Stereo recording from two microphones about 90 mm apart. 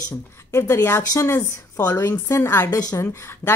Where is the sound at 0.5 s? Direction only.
30° left (ahead or behind).